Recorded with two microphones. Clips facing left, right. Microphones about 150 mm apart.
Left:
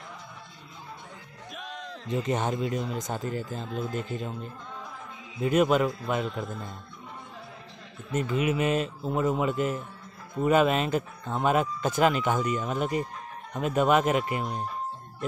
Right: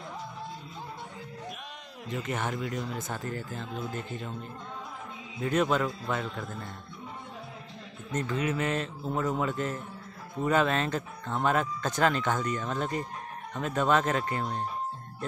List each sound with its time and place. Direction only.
2.1 s speech: 20° left (ahead or behind)
5.4 s speech: 15° left (ahead or behind)
8.1 s speech: 10° left (ahead or behind)